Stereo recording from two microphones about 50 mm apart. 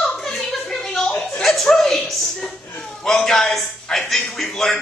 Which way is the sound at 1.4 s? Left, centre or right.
Centre.